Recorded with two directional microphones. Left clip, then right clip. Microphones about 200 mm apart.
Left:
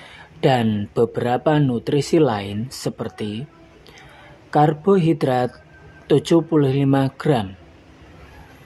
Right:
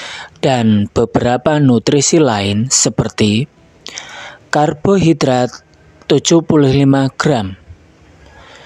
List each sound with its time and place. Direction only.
0.0 s speech: 40° right (ahead or behind)